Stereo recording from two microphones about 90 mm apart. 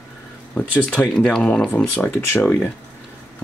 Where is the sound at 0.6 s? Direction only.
15° left (ahead or behind).